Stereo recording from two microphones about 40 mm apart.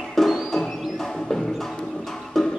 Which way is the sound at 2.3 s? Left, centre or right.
Centre.